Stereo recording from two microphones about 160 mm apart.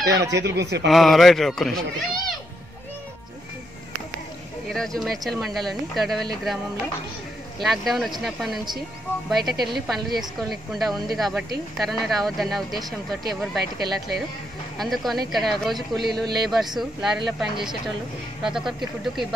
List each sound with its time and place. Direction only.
0.6 s a man's voice: 90° right
0.8 s speech: centre (ahead or behind)
4.6 s speech: centre (ahead or behind)
7.6 s speech: centre (ahead or behind)